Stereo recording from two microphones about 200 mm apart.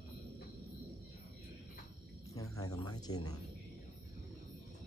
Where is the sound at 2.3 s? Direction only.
15° left (ahead or behind).